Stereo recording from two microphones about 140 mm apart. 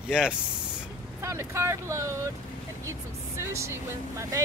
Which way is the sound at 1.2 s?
20° right (ahead or behind).